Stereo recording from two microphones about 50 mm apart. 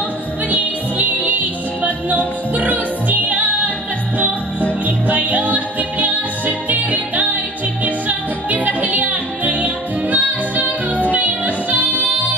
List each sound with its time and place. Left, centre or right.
0.5 s music: right
4.8 s music: right